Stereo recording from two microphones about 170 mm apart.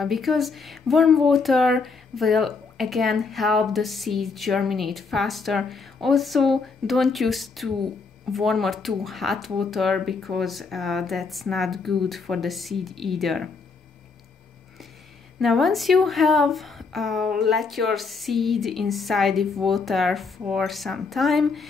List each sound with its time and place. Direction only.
0.0 s speech: centre (ahead or behind)
15.3 s speech: centre (ahead or behind)